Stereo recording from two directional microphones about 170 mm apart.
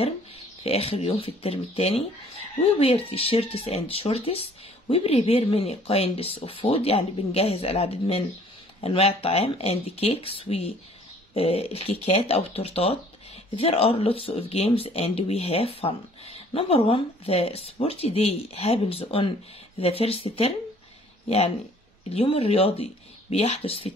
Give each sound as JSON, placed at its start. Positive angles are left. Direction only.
{"t": 0.7, "sound": "speech", "side_deg": 35}
{"t": 22.1, "sound": "speech", "side_deg": 35}